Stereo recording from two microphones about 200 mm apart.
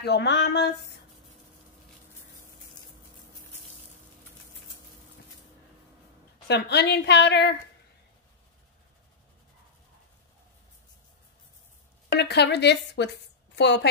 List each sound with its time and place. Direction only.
0.0 s a woman's voice: 55° left (ahead or behind)
6.4 s a woman's voice: 60° left (ahead or behind)
12.2 s a woman's voice: 55° left (ahead or behind)